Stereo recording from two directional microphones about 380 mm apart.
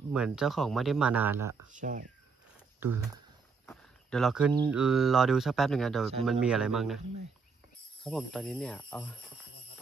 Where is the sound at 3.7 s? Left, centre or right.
Centre.